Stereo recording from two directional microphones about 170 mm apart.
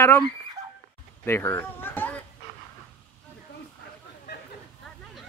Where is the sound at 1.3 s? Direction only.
15° left (ahead or behind).